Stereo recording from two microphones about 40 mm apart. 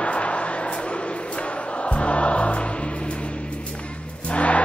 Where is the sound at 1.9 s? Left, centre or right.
Left.